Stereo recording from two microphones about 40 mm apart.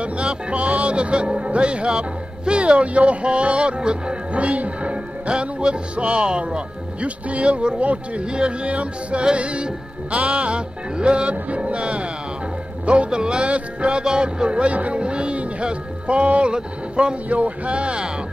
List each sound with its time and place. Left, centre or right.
0.0 s speech: right